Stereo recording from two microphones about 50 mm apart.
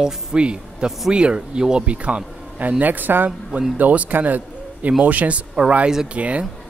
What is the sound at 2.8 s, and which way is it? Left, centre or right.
Speech, right.